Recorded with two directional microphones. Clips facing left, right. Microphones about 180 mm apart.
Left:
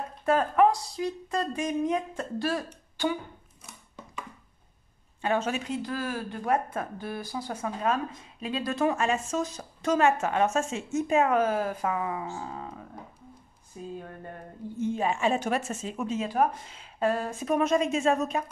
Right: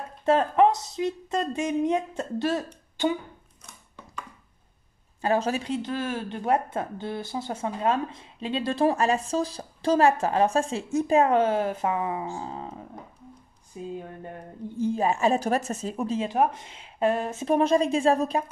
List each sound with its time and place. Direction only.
0.2 s speech: 25° right (ahead or behind)
5.2 s speech: 35° right (ahead or behind)
13.7 s a sound: 15° right (ahead or behind)
14.8 s speech: 35° right (ahead or behind)
17.0 s speech: 20° right (ahead or behind)